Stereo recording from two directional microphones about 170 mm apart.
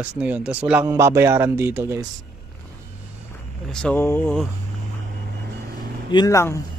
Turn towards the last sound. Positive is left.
turn(degrees=20)  # may be behind; listen again after turning